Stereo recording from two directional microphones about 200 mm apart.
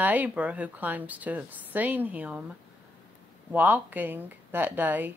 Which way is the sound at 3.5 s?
10° right (ahead or behind).